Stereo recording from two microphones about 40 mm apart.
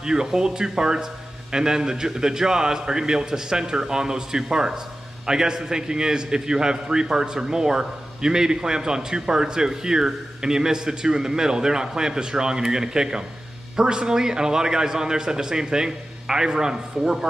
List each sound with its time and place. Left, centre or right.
0.0 s a man's voice: centre